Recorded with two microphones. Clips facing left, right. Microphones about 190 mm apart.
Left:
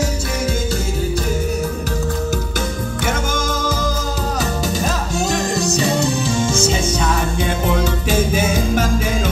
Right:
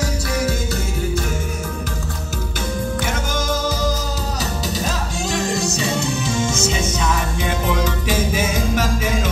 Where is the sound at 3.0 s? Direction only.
50° left (ahead or behind).